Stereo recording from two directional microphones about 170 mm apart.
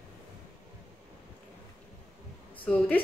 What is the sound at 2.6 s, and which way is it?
Speech, 5° left (ahead or behind).